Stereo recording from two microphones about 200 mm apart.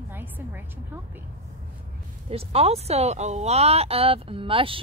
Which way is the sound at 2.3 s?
30° right (ahead or behind).